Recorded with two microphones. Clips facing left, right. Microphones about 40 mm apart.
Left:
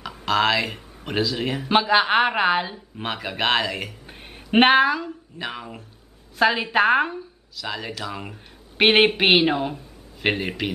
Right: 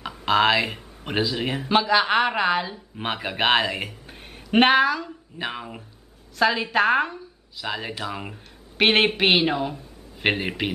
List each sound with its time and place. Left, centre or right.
0.2 s speech: centre
1.7 s a woman's voice: centre
3.0 s speech: centre
4.0 s a sound: centre
5.4 s speech: centre
6.3 s a woman's voice: centre
7.6 s speech: centre
8.7 s a woman's voice: centre
10.2 s speech: centre